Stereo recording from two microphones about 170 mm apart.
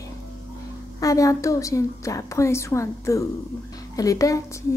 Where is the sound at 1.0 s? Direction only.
20° left (ahead or behind).